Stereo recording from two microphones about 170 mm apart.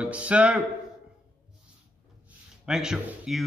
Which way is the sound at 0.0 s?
5° right (ahead or behind).